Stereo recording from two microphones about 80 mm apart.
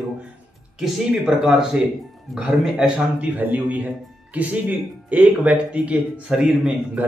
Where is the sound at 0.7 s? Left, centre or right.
Centre.